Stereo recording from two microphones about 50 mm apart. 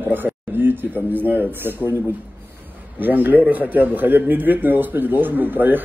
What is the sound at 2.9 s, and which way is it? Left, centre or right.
A man's voice, right.